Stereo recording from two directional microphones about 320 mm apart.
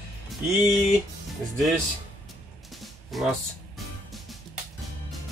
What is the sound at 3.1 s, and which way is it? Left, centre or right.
Speech, centre.